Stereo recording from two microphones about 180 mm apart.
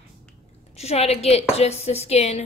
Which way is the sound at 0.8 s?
35° left (ahead or behind).